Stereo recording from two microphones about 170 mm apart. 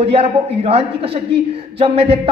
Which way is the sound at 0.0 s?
35° right (ahead or behind).